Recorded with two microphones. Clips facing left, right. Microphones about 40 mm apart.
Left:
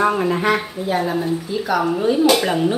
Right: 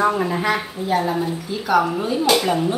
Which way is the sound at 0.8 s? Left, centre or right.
Centre.